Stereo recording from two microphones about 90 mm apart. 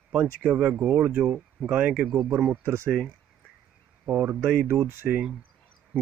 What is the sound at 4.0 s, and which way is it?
Speech, 25° right (ahead or behind).